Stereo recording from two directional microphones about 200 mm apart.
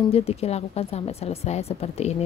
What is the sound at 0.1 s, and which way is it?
A woman's voice, 30° left (ahead or behind).